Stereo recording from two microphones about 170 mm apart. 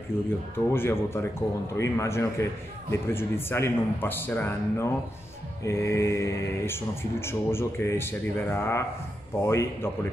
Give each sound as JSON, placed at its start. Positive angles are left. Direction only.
{"t": 0.1, "sound": "speech", "side_deg": 15}